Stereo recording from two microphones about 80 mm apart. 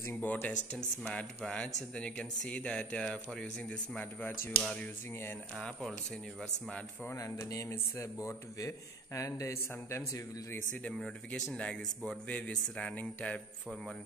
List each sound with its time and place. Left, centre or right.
0.0 s speech: left
1.0 s speech: centre
5.6 s speech: centre
7.2 s a man's voice: left
10.7 s speech: centre
11.0 s speech: centre